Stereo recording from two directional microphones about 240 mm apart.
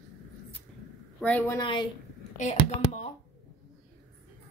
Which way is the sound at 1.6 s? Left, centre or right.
Centre.